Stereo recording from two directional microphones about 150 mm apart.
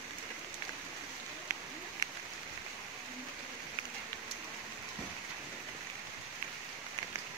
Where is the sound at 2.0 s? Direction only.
20° right (ahead or behind).